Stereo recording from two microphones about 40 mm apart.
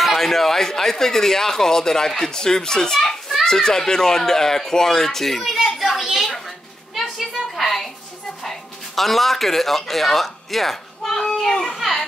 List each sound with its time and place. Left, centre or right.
0.2 s speech: centre
7.0 s a sound: centre
8.5 s music: centre
11.7 s children playing: centre